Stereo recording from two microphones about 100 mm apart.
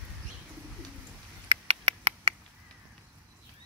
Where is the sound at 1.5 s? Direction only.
85° right.